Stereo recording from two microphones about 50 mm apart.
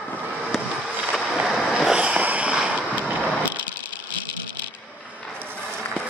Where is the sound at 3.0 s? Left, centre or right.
Right.